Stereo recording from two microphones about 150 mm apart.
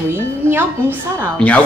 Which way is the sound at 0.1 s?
15° right (ahead or behind).